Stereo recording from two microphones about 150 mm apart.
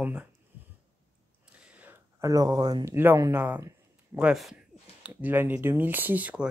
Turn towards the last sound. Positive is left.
turn(degrees=-10)  # may be behind; listen again after turning